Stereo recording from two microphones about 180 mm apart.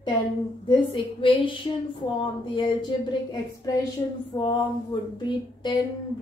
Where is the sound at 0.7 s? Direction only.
25° left (ahead or behind).